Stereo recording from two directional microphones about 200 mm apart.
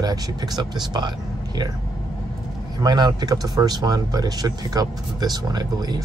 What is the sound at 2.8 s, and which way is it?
Speech, 20° right (ahead or behind).